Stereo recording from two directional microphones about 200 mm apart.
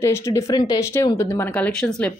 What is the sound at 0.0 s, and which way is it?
Speech, 15° left (ahead or behind).